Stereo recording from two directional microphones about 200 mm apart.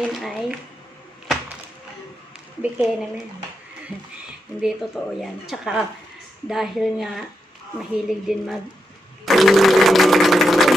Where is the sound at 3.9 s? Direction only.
25° left (ahead or behind).